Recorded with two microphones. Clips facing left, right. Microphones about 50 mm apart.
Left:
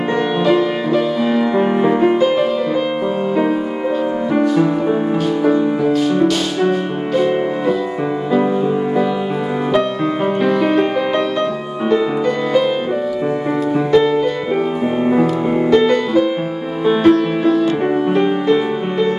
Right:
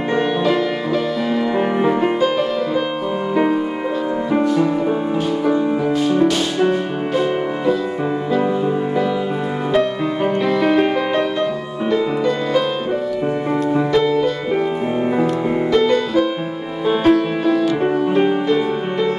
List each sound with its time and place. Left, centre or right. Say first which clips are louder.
2.1 s music: left 3 dB; centre
4.3 s music: left 2 dB; centre
5.9 s music: left 2 dB; centre
10.5 s music: right 1 dB; centre
13.9 s music: left 4 dB; centre
15.7 s music: left 3 dB; left